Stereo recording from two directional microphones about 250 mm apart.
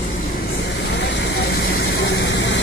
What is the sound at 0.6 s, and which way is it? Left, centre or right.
Vehicle, left.